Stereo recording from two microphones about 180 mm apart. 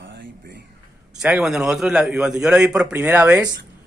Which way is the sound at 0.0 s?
85° right.